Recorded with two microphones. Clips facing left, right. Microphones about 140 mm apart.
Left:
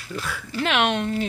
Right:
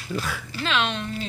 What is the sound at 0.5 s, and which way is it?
Speech, 65° left (ahead or behind).